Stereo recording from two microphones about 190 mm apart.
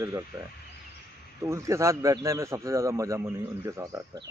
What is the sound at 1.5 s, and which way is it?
Speech, 15° right (ahead or behind).